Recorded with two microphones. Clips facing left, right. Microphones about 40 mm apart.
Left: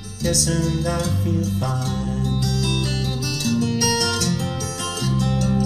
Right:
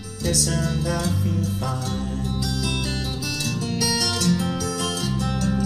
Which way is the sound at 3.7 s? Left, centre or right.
Left.